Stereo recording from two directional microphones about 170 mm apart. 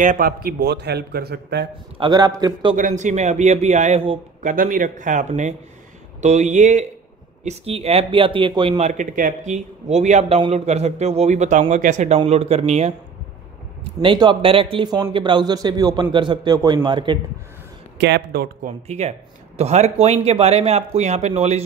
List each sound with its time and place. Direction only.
0.0 s a man's voice: 55° right (ahead or behind); by 1.7 s 75° right (ahead or behind)
2.0 s a man's voice: 25° right (ahead or behind)
2.7 s speech: 45° right (ahead or behind)
4.4 s speech: 50° right (ahead or behind)
14.0 s a man's voice: 25° right (ahead or behind)
17.9 s a man's voice: 85° right; by 18.7 s 65° right (ahead or behind)
18.9 s speech: 40° right (ahead or behind)